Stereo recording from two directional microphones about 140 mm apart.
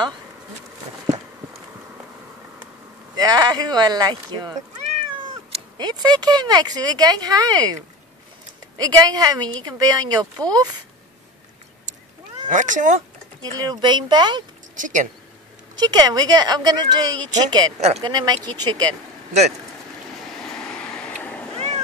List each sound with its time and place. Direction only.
3.2 s a woman's voice: 30° right (ahead or behind)
5.8 s a woman's voice: 30° right (ahead or behind)
8.7 s a woman's voice: 25° right (ahead or behind)
12.4 s speech: 65° right (ahead or behind)
13.4 s speech: 30° right (ahead or behind)
14.8 s speech: 65° right (ahead or behind)
15.7 s a woman's voice: 30° right (ahead or behind)
17.7 s speech: 50° right (ahead or behind)
18.0 s a woman's voice: 30° right (ahead or behind)
20.5 s vehicle: 5° left (ahead or behind)